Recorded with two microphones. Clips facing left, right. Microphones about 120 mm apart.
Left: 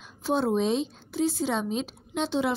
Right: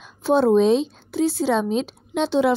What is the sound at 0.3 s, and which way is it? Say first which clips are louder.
A woman's voice: right 9 dB; 85° right.